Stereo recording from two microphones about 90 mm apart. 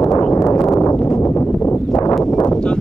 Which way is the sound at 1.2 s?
25° left (ahead or behind).